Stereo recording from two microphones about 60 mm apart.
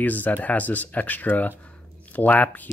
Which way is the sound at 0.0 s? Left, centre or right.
Left.